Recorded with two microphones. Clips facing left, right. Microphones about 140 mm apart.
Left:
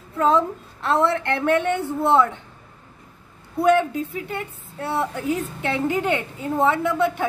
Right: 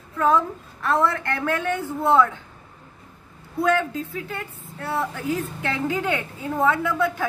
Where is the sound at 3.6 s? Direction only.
25° left (ahead or behind).